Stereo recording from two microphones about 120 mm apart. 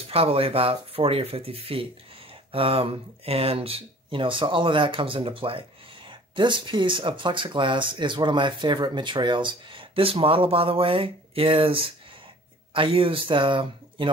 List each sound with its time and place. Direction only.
0.1 s speech: 50° right (ahead or behind)